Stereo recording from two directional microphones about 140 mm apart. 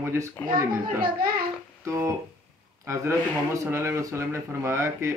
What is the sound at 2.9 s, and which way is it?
Speech, 20° right (ahead or behind).